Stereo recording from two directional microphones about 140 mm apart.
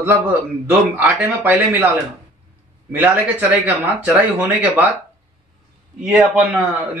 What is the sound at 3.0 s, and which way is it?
Speech, 10° right (ahead or behind).